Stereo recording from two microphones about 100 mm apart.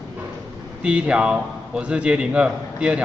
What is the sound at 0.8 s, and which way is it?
A man's voice, 10° right (ahead or behind).